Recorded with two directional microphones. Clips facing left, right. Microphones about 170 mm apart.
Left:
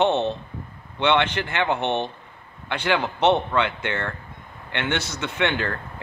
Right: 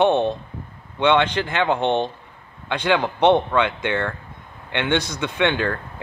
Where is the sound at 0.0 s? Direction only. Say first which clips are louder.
Right 3 dB; 10° right (ahead or behind).